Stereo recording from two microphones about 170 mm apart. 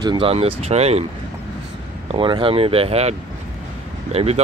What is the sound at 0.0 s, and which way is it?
Speech, 30° right (ahead or behind).